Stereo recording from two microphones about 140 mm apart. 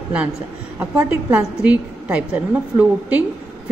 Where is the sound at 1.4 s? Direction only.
10° right (ahead or behind).